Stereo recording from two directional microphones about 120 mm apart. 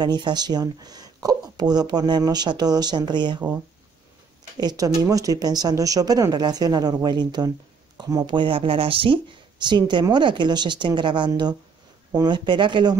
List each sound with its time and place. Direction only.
0.0 s speech: 35° right (ahead or behind)
4.6 s speech: 30° right (ahead or behind)